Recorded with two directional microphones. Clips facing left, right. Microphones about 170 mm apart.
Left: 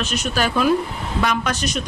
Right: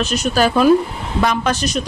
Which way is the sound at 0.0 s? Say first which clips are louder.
Right 6 dB; 40° right (ahead or behind).